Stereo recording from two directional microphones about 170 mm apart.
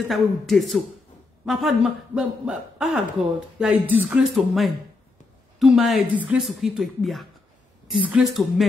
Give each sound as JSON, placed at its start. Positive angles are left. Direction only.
{"t": 0.1, "sound": "a man's voice", "side_deg": 0}